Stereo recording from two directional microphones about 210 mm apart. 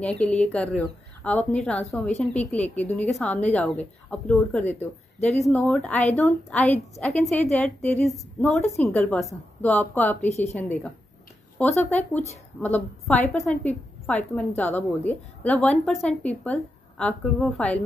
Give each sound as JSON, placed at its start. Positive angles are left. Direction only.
{"t": 0.0, "sound": "a woman's voice", "side_deg": 5}
{"t": 10.2, "sound": "a woman's voice", "side_deg": 30}
{"t": 12.5, "sound": "a woman's voice", "side_deg": 5}